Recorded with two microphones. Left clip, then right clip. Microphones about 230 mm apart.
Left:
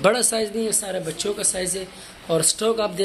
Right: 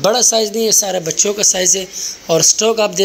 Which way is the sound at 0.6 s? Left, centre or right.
Right.